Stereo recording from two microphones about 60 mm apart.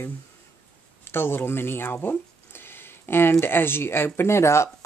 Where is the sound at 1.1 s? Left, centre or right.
Left.